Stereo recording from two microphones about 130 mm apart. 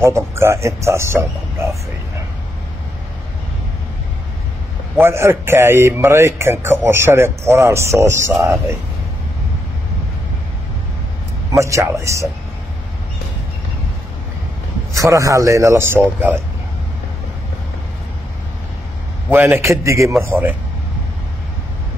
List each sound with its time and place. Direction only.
0.0 s speech: 20° right (ahead or behind)
4.9 s speech: 20° right (ahead or behind)
11.5 s speech: 25° right (ahead or behind)
14.9 s speech: 25° right (ahead or behind)
19.3 s speech: 15° right (ahead or behind)